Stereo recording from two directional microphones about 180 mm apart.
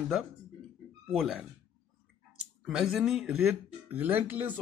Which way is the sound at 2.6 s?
Centre (ahead or behind).